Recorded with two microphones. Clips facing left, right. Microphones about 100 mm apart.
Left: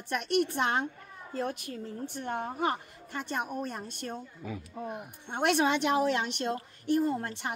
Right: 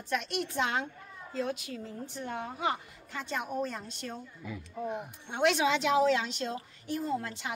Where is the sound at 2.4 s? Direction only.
45° left (ahead or behind).